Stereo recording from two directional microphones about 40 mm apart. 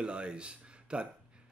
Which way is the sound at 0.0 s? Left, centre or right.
Right.